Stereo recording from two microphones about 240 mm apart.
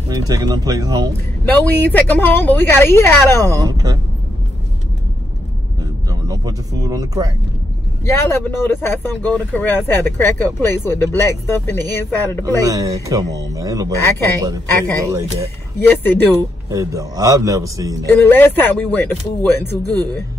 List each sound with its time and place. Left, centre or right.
0.1 s speech: centre
1.5 s speech: centre
3.6 s speech: centre
5.8 s a sound: centre
8.0 s speech: centre
12.4 s speech: centre
15.0 s speech: centre
15.9 s speech: centre
16.7 s speech: centre
18.1 s speech: centre